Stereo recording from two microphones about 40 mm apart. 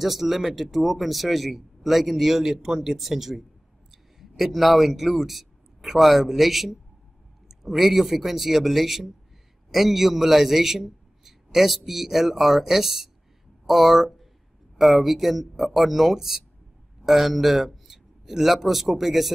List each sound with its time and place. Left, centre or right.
0.0 s a man's voice: centre
3.9 s a sound: centre
4.5 s a man's voice: centre